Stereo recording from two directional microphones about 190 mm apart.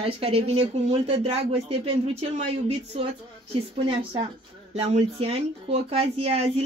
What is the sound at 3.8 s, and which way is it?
Speech, 35° right (ahead or behind).